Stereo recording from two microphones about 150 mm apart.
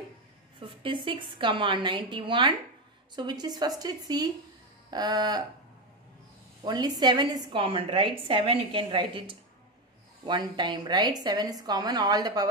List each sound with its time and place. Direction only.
0.6 s a woman's voice: 35° right (ahead or behind)
6.6 s a woman's voice: 30° right (ahead or behind)